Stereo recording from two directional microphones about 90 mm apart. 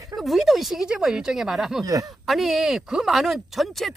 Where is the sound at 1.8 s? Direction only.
40° right (ahead or behind).